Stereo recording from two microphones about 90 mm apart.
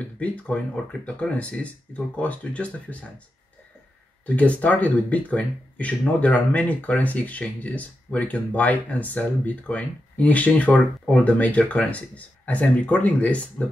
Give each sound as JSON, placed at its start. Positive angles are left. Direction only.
{"t": 0.2, "sound": "speech", "side_deg": 15}
{"t": 4.4, "sound": "speech", "side_deg": 15}